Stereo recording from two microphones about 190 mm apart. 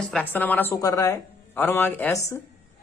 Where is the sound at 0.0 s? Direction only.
5° left (ahead or behind).